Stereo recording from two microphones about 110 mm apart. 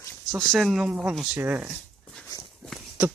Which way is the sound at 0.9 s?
15° right (ahead or behind).